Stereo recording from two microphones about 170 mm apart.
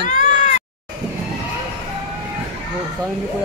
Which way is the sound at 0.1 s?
50° left (ahead or behind).